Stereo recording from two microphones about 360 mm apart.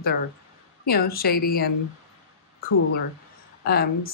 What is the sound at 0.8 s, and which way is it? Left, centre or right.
Speech, left.